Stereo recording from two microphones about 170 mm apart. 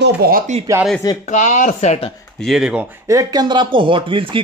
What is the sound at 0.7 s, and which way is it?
Speech, 20° right (ahead or behind).